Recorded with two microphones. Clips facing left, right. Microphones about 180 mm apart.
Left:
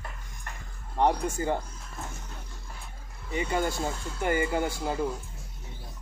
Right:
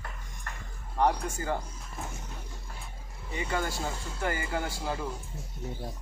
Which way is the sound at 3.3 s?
20° left (ahead or behind).